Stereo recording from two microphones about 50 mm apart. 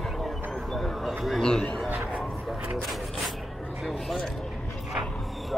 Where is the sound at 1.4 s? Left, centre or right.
Centre.